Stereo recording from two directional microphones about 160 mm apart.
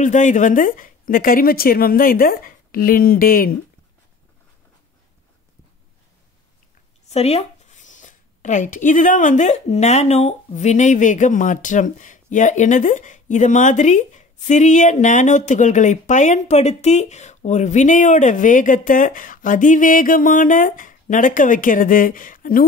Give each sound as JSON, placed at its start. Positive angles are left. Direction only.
{"t": 0.0, "sound": "a woman's voice", "side_deg": 50}
{"t": 7.1, "sound": "speech", "side_deg": 40}